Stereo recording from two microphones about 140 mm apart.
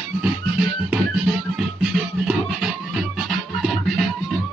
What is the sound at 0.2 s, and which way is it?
Music, 10° right (ahead or behind).